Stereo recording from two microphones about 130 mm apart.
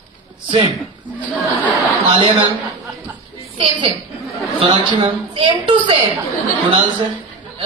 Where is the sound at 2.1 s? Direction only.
45° right (ahead or behind).